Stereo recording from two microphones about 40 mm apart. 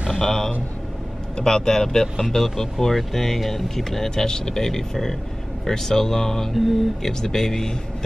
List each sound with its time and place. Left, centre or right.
0.2 s speech: centre
6.5 s a sound: centre
7.0 s speech: centre